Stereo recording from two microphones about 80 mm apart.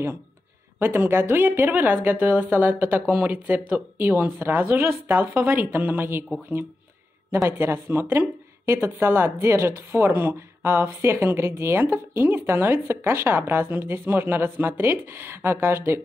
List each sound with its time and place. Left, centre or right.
0.7 s a woman's voice: right
7.4 s a woman's voice: right